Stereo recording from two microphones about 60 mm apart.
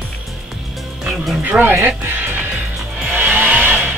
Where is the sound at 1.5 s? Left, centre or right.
Right.